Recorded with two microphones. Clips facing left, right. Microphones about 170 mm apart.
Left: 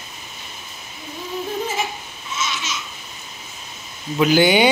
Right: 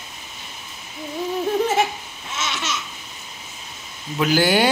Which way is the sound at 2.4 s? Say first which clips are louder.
Even; 65° right (ahead or behind).